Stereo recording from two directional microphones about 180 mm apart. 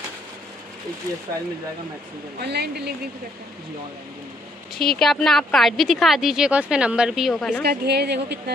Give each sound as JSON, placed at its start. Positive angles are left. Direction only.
{"t": 2.4, "sound": "speech", "side_deg": -65}
{"t": 4.7, "sound": "a woman's voice", "side_deg": 0}
{"t": 7.6, "sound": "speech", "side_deg": -65}